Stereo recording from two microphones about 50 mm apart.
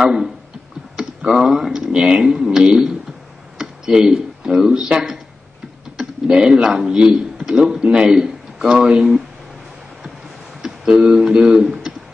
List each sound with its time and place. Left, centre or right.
0.0 s a sound: centre
0.9 s tick: centre
3.5 s speech: centre
6.2 s speech: centre
8.8 s speech: centre
10.6 s speech: centre